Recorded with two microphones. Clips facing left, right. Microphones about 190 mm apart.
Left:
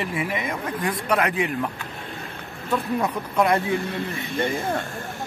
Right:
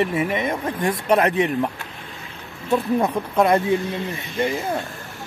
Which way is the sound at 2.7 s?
25° right (ahead or behind).